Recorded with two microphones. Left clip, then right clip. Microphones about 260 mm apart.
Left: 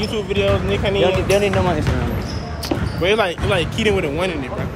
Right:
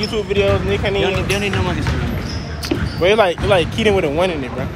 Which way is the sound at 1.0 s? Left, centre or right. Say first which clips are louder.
Left 3 dB; left.